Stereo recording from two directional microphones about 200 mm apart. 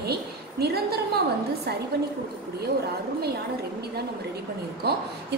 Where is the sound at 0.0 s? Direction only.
55° right (ahead or behind).